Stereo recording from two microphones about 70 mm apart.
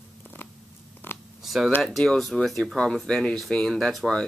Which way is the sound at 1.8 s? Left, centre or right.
Centre.